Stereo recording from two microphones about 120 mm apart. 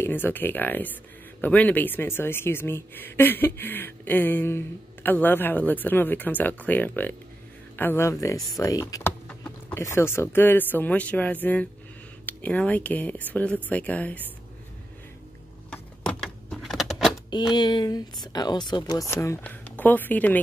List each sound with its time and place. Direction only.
0.0 s speech: 15° left (ahead or behind)
15.7 s keys jangling: 5° left (ahead or behind)
17.6 s speech: 35° left (ahead or behind)
19.1 s speech: 25° left (ahead or behind)
19.4 s speech: 15° left (ahead or behind)